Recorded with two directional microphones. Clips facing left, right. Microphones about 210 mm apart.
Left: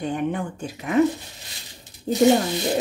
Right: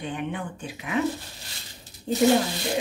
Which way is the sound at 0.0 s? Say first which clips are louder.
Left 6 dB; 45° left (ahead or behind).